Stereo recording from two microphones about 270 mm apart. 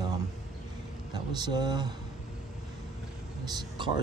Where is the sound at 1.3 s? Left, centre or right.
Centre.